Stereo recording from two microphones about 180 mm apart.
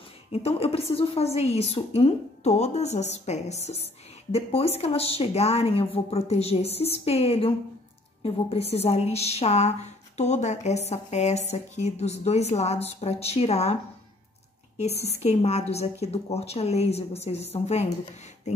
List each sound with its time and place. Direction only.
0.3 s a woman's voice: 35° left (ahead or behind)
15.1 s a woman's voice: 35° left (ahead or behind)